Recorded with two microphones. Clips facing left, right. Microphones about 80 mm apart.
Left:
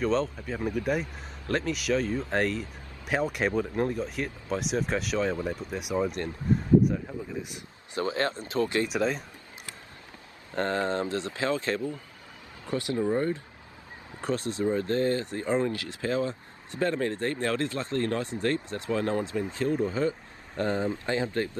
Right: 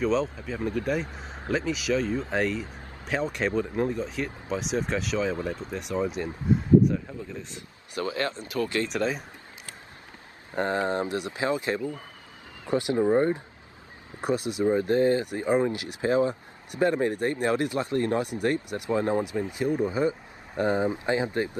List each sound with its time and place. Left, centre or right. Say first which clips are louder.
0.0 s speech: right 1 dB; centre
7.4 s speech: even; centre
8.0 s speech: left 1 dB; left
8.8 s speech: even; centre
10.5 s speech: right 1 dB; centre